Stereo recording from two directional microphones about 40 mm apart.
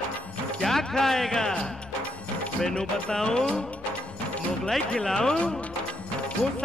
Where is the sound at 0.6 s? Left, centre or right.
Centre.